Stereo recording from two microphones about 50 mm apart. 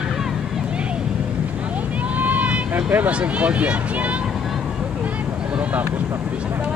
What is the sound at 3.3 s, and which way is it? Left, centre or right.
Speech, right.